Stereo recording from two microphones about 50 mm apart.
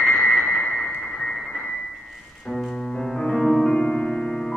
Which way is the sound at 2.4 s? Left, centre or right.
Centre.